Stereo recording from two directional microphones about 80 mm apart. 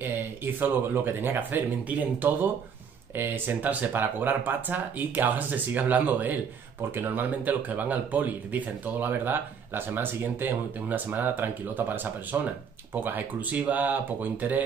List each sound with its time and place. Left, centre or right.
0.6 s speech: right